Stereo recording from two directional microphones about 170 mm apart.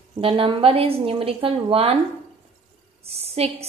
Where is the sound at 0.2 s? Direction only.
30° right (ahead or behind).